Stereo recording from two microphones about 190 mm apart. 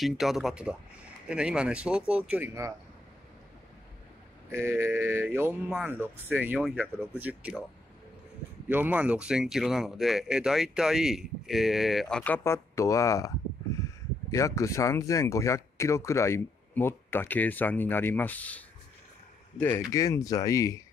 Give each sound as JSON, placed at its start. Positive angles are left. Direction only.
{"t": 0.0, "sound": "speech", "side_deg": 0}
{"t": 4.5, "sound": "speech", "side_deg": -15}
{"t": 8.6, "sound": "speech", "side_deg": -10}
{"t": 14.3, "sound": "speech", "side_deg": 15}
{"t": 19.6, "sound": "speech", "side_deg": 15}